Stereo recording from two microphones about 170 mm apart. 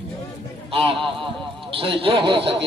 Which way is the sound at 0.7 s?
30° right (ahead or behind).